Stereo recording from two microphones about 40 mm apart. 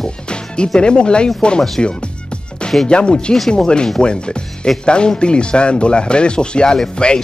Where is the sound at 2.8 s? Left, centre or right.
Left.